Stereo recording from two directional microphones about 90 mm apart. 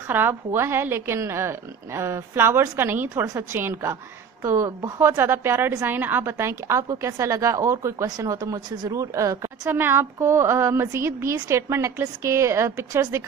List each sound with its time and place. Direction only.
0.1 s a woman's voice: 20° right (ahead or behind); by 5.0 s 35° right (ahead or behind)
5.0 s a woman's voice: 25° right (ahead or behind)
9.7 s speech: 25° right (ahead or behind)